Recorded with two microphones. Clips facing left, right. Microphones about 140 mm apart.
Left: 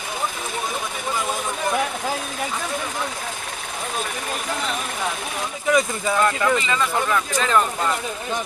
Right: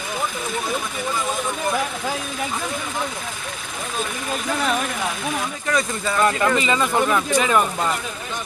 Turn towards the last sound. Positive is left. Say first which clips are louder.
# right 2 dB
turn(degrees=-15)  # may be behind; listen again after turning